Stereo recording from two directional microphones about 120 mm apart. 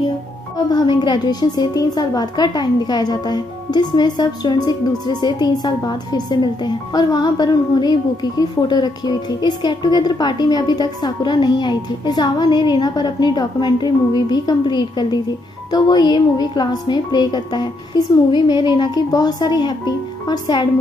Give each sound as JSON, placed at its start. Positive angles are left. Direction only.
{"t": 0.7, "sound": "a woman's voice", "side_deg": 35}